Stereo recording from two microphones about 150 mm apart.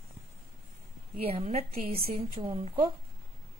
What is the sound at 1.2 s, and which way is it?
A woman's voice, 45° right (ahead or behind).